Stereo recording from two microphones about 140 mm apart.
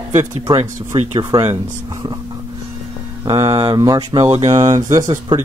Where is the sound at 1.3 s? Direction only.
25° right (ahead or behind).